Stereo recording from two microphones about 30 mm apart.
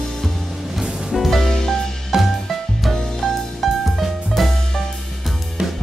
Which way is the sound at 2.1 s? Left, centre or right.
Centre.